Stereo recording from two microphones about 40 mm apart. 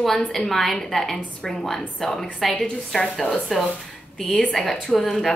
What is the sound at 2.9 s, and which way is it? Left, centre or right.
Speech, centre.